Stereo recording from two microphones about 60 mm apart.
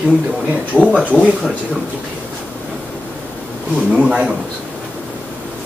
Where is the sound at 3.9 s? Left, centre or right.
Centre.